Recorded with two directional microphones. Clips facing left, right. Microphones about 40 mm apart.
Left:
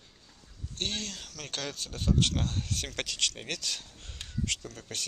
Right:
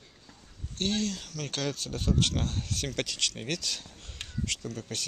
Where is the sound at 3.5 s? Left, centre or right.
Centre.